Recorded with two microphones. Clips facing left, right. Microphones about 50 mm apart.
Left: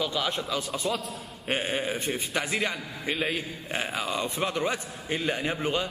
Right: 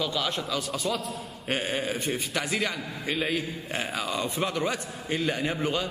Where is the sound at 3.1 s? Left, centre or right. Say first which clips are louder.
Right 1 dB; centre.